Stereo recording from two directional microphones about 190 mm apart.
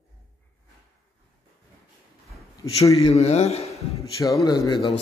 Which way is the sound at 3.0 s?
35° left (ahead or behind).